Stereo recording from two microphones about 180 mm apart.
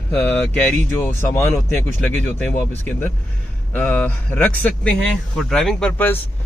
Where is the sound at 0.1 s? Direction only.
10° left (ahead or behind).